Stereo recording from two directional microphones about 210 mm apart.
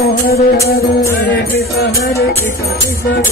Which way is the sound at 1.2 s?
50° left (ahead or behind).